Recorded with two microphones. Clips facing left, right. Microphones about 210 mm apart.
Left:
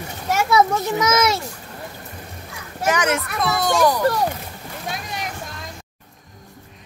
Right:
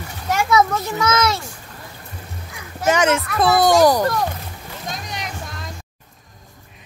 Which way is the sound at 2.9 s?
25° right (ahead or behind).